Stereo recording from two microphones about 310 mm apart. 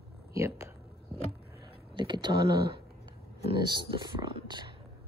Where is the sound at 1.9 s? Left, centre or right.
Centre.